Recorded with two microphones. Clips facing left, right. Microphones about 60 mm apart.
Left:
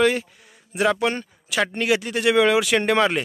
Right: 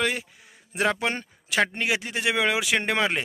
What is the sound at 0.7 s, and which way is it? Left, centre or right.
Speech, right.